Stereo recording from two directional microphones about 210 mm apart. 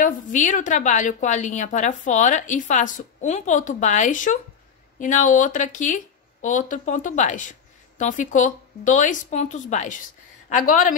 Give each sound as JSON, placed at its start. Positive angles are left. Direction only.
{"t": 0.0, "sound": "a woman's voice", "side_deg": 35}